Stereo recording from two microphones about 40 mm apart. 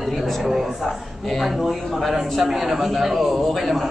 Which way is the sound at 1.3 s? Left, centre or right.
Centre.